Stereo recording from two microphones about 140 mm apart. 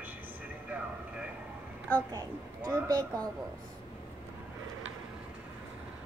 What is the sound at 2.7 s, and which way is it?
Speech, 25° right (ahead or behind).